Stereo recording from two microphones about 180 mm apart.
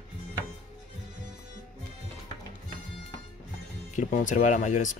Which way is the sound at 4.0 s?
45° left (ahead or behind).